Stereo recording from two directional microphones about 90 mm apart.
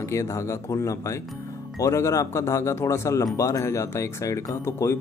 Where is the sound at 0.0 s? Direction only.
35° left (ahead or behind).